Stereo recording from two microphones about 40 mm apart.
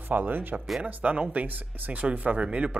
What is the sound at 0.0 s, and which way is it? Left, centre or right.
Speech, right.